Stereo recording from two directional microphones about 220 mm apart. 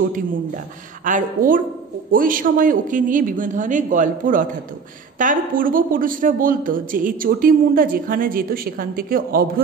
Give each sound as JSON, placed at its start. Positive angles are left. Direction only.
{"t": 1.0, "sound": "a man's voice", "side_deg": -35}